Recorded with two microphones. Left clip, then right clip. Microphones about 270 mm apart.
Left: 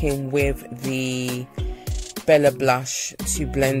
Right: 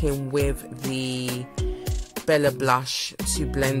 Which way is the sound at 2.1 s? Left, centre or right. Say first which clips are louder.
Left 5 dB; centre.